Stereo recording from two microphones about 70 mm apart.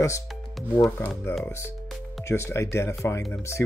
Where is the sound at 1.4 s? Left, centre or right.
Left.